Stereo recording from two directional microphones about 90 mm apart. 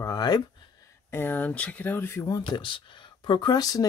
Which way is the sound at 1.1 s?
20° left (ahead or behind).